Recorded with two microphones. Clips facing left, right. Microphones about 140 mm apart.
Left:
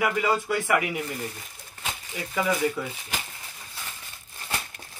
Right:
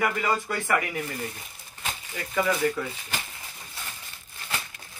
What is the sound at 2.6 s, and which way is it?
Speech, 10° left (ahead or behind).